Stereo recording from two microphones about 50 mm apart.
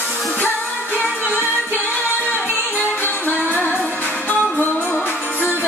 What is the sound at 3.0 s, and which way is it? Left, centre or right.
Music, left.